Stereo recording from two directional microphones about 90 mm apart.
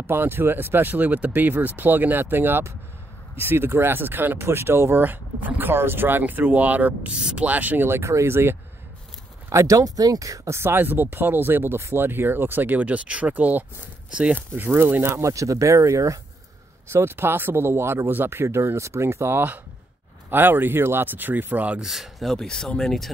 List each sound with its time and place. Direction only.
0.0 s speech: 25° right (ahead or behind)
14.5 s speech: 25° right (ahead or behind)
21.8 s speech: 5° right (ahead or behind)